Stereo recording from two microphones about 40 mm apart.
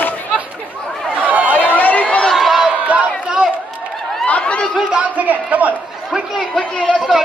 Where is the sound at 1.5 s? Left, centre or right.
Left.